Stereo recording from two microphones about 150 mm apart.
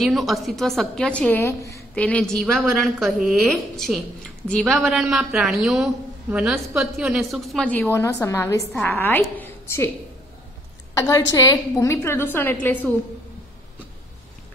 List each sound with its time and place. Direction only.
0.0 s a woman's voice: centre (ahead or behind)
1.4 s a woman's voice: 20° left (ahead or behind); by 7.6 s centre (ahead or behind)
7.6 s a woman's voice: 10° left (ahead or behind)
11.0 s a woman's voice: 20° left (ahead or behind)